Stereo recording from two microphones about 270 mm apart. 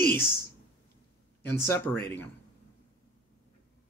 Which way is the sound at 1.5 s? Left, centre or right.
Centre.